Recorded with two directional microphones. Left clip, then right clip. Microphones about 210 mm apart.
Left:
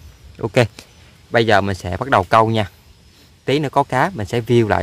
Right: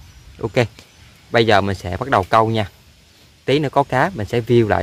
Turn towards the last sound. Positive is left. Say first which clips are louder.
# even
turn(degrees=10)  # may be behind; listen again after turning